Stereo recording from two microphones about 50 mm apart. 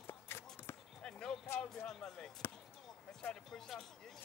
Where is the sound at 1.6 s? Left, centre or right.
Centre.